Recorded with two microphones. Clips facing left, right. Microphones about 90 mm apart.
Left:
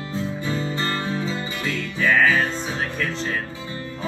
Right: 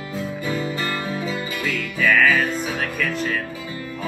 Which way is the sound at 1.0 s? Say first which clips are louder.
Even; 25° left (ahead or behind).